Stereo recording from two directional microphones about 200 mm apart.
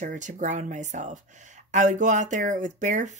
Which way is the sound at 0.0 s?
40° right (ahead or behind).